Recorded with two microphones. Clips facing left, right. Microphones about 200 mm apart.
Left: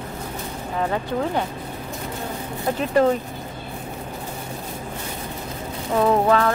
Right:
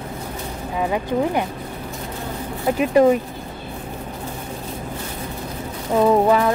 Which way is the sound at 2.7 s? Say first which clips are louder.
Right 4 dB; 10° right (ahead or behind).